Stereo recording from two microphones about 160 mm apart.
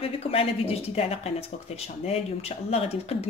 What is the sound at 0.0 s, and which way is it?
Speech, 35° left (ahead or behind).